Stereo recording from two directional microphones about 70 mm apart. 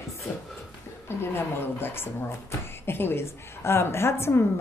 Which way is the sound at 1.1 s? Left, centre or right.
Left.